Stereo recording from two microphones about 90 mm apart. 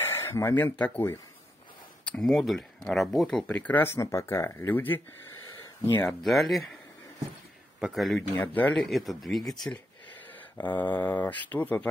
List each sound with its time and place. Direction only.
0.0 s speech: 25° left (ahead or behind)
2.2 s speech: centre (ahead or behind); by 3.8 s 15° left (ahead or behind)
3.8 s speech: 30° left (ahead or behind)
5.4 s a sound: 45° left (ahead or behind)
5.9 s speech: 25° left (ahead or behind)
6.2 s speech: centre (ahead or behind)
7.8 s speech: centre (ahead or behind)
8.5 s speech: 20° left (ahead or behind)
8.8 s speech: centre (ahead or behind)
10.6 s speech: 20° left (ahead or behind)